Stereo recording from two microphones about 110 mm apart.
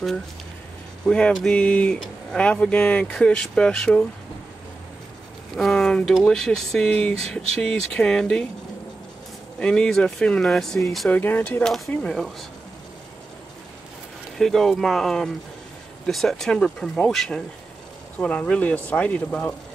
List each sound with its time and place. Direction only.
1.0 s speech: 5° left (ahead or behind)
5.6 s speech: 5° left (ahead or behind)
9.6 s speech: 10° left (ahead or behind)
11.1 s speech: 15° left (ahead or behind)
11.6 s speech: centre (ahead or behind)
14.4 s speech: centre (ahead or behind)